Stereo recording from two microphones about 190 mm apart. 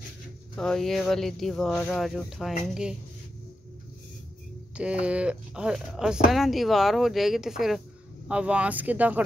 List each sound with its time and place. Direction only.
0.6 s speech: 5° left (ahead or behind)
4.7 s speech: 5° right (ahead or behind)